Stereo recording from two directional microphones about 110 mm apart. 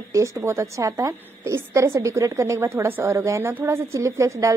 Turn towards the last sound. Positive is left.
turn(degrees=-30)  # may be behind; listen again after turning